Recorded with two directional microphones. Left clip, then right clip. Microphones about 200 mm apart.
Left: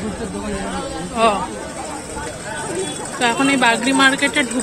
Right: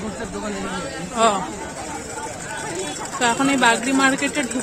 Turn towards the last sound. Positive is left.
turn(degrees=-5)  # may be behind; listen again after turning